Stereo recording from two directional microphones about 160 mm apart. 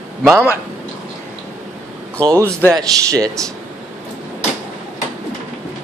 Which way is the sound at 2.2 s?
20° right (ahead or behind).